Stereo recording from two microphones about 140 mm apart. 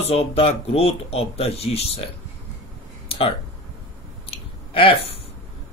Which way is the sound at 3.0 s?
40° left (ahead or behind).